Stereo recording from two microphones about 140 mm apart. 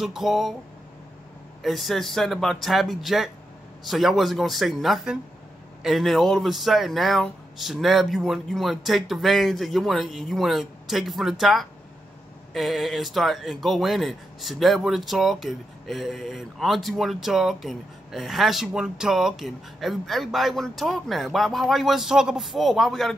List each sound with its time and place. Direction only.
0.0 s speech: centre (ahead or behind)
1.6 s speech: centre (ahead or behind)